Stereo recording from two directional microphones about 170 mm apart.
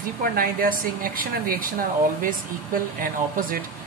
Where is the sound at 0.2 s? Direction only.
55° right (ahead or behind).